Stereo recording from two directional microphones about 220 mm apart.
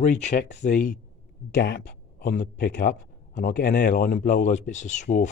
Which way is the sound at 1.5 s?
45° left (ahead or behind).